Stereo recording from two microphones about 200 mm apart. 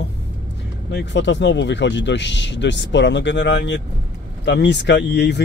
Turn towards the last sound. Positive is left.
turn(degrees=60)  # may be behind; listen again after turning